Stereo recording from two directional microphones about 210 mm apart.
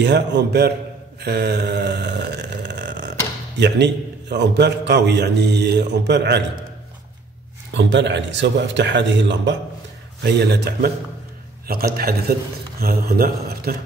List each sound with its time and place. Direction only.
0.0 s a man's voice: 55° right (ahead or behind)
1.2 s a sound: 50° right (ahead or behind)
3.5 s a man's voice: 55° right (ahead or behind)
7.7 s a man's voice: 55° right (ahead or behind)